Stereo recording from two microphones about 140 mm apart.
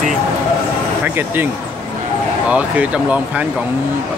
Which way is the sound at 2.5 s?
10° right (ahead or behind).